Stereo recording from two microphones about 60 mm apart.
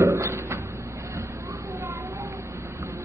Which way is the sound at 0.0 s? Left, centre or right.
Right.